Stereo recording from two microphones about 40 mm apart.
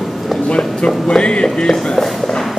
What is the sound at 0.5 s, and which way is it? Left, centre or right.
Speech, left.